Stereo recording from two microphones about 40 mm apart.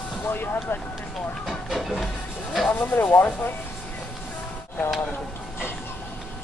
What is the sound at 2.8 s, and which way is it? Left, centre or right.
Speech, left.